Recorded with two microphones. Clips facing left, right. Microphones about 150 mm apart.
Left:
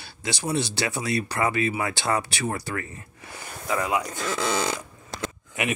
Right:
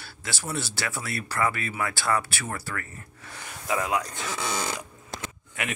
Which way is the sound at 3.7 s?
Centre (ahead or behind).